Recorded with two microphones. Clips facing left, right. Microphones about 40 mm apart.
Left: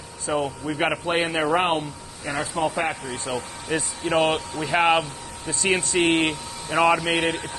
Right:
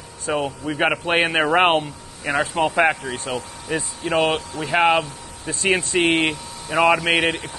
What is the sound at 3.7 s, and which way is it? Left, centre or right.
Speech, centre.